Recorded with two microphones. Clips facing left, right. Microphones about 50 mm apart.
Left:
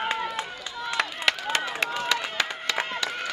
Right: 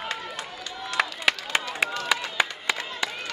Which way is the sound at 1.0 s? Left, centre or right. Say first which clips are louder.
Right 3 dB; centre.